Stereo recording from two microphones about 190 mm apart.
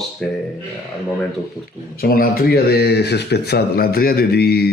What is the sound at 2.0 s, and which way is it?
Speech, 55° left (ahead or behind).